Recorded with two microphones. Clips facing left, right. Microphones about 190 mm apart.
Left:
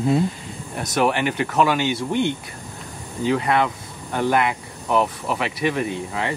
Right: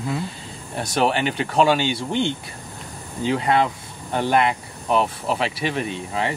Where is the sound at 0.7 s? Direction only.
30° right (ahead or behind).